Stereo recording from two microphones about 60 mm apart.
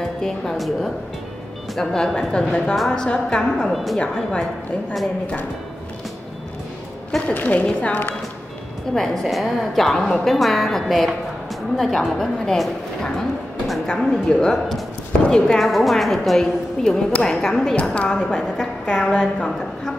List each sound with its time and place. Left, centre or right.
0.0 s a woman's voice: centre
4.0 s a woman's voice: centre
7.3 s a woman's voice: left
8.9 s a woman's voice: centre
13.8 s a woman's voice: centre
18.6 s a woman's voice: centre